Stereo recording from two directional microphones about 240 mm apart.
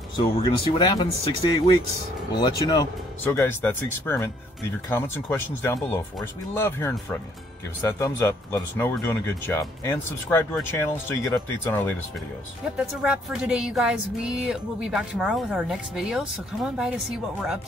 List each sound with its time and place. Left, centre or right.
0.2 s speech: centre
2.3 s speech: centre
12.7 s speech: centre